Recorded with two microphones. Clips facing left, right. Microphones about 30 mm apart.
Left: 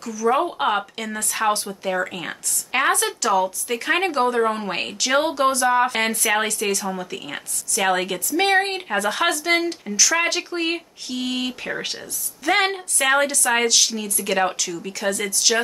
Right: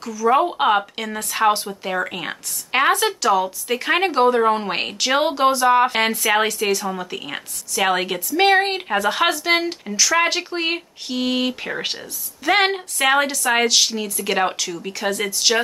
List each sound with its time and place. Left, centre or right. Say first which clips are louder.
0.0 s speech: right 3 dB; centre